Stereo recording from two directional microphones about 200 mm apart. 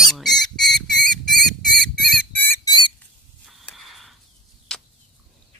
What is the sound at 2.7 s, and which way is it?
Chicken, 25° left (ahead or behind).